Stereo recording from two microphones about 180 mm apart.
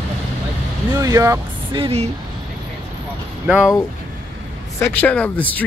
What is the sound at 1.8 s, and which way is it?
Speech, 35° right (ahead or behind).